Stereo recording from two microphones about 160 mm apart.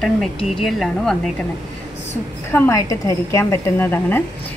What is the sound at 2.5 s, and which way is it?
A woman's voice, 15° left (ahead or behind).